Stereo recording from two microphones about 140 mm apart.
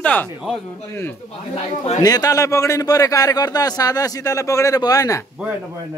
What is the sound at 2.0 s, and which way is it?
A man's voice, 25° left (ahead or behind).